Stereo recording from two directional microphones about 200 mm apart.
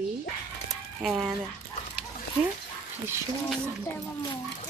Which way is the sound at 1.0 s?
Centre (ahead or behind).